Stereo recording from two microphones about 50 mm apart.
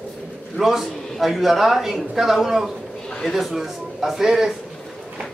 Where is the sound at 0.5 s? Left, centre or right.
Centre.